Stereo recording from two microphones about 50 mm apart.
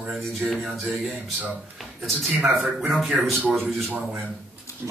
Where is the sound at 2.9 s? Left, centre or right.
Centre.